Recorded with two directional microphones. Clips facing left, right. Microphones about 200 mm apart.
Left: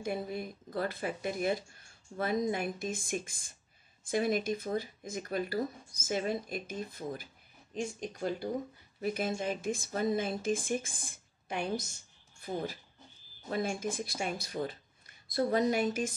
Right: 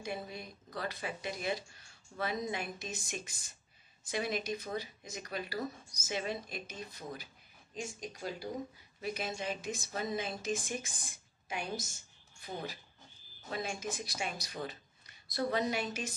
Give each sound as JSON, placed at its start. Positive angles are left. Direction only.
{"t": 0.0, "sound": "a woman's voice", "side_deg": 50}
{"t": 13.5, "sound": "speech", "side_deg": 50}